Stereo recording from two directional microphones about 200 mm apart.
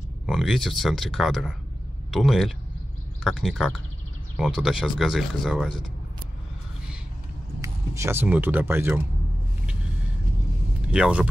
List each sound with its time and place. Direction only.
0.3 s speech: centre (ahead or behind)
7.6 s speech: 15° right (ahead or behind)
10.9 s speech: 5° right (ahead or behind)